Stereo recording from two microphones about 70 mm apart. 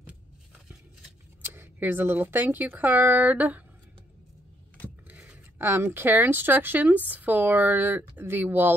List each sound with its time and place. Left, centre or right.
1.4 s a woman's voice: right
5.0 s a sound: centre
5.6 s a woman's voice: right